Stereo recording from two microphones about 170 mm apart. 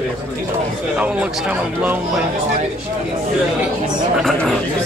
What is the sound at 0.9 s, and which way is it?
A man's voice, 5° right (ahead or behind).